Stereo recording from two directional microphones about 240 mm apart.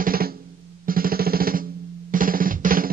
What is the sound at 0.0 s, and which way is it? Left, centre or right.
Drum, right.